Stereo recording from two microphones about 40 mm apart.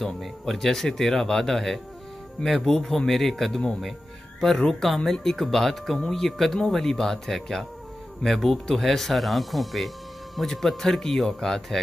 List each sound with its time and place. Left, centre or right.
0.0 s speech: centre
4.6 s speech: centre